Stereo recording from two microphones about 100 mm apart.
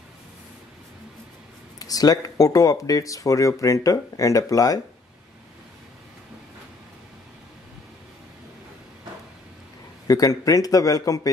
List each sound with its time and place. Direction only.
1.8 s speech: 40° left (ahead or behind)
10.0 s speech: 35° left (ahead or behind)